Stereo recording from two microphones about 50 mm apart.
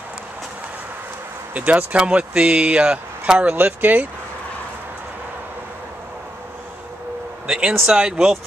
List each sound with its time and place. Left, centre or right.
1.5 s speech: right
3.5 s speech: right
7.4 s a sound: right
7.8 s speech: centre